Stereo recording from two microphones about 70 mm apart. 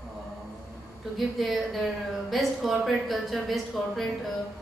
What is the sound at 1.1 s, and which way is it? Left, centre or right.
Speech, centre.